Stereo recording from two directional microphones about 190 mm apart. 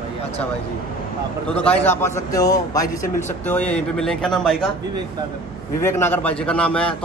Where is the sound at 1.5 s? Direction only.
5° left (ahead or behind).